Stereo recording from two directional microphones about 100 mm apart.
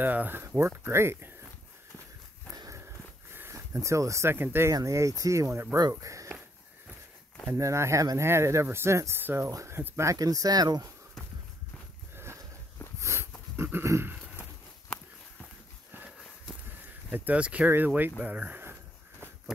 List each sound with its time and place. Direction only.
0.0 s speech: 15° right (ahead or behind)
2.5 s dog: 40° right (ahead or behind)
3.3 s speech: 25° right (ahead or behind)
5.8 s speech: 35° right (ahead or behind)
7.4 s speech: 30° right (ahead or behind)
10.1 s speech: 40° right (ahead or behind)
13.0 s dog: 25° right (ahead or behind)
17.1 s speech: 15° right (ahead or behind)